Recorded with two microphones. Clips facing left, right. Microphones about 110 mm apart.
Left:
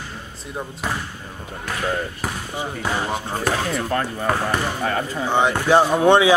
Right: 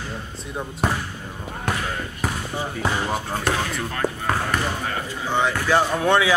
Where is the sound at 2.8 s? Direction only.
Centre (ahead or behind).